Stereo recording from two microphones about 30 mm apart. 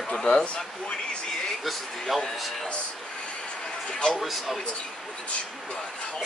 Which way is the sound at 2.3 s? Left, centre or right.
Centre.